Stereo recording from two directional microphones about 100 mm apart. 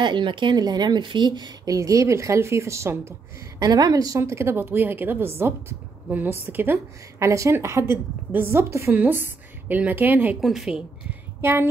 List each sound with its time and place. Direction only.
0.0 s speech: 50° right (ahead or behind)
1.8 s a woman's voice: 30° right (ahead or behind)
10.4 s speech: centre (ahead or behind)